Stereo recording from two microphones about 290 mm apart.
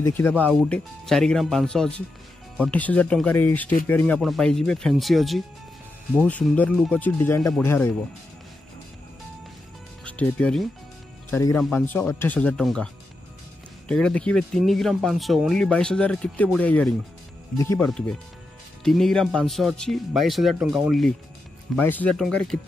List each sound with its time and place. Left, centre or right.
0.0 s speech: centre
10.0 s speech: centre